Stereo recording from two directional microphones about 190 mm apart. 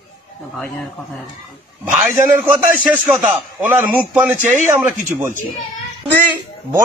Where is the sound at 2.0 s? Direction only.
10° right (ahead or behind).